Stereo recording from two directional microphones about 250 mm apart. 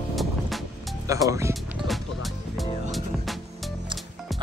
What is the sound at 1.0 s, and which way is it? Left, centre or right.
Music, centre.